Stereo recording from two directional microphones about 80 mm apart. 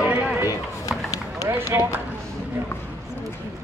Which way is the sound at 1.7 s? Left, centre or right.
Right.